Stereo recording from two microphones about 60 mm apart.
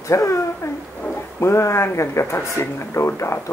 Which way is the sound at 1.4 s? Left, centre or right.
Left.